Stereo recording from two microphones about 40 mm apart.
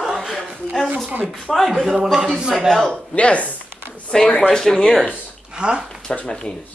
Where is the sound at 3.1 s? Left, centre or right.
Left.